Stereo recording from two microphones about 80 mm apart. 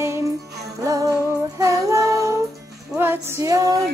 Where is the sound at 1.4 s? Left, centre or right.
Right.